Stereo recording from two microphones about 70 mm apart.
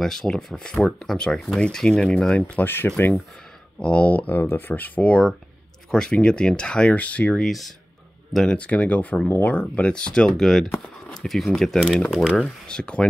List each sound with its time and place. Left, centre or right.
0.0 s speech: centre
2.4 s speech: left
3.8 s speech: centre
7.4 s speech: centre
8.5 s speech: left; by 12.4 s centre
12.6 s speech: centre